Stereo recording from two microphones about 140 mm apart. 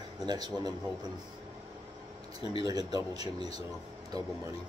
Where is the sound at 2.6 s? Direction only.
30° right (ahead or behind).